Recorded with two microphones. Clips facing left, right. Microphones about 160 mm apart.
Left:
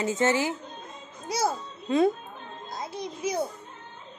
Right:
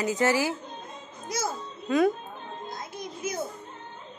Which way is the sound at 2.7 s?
35° left (ahead or behind).